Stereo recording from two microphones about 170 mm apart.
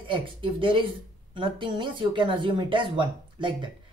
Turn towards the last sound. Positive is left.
turn(degrees=-30)  # may be behind; listen again after turning